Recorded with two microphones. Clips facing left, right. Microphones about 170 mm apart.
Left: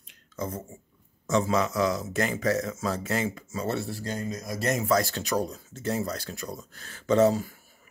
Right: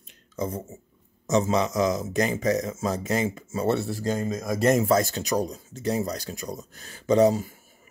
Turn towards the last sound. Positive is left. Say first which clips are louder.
# right 2 dB
turn(degrees=-15)  # may be behind; listen again after turning